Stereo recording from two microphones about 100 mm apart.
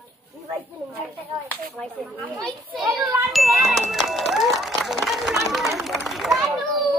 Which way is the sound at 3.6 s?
5° right (ahead or behind).